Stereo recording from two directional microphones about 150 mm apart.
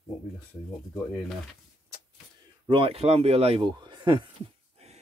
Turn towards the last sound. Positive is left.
turn(degrees=-45)  # may be behind; listen again after turning